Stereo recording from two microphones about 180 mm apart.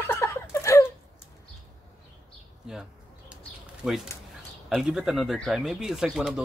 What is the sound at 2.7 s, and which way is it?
Speech, 5° right (ahead or behind).